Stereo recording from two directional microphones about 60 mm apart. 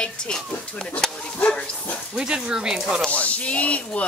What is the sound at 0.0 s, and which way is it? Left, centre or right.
Speech, centre.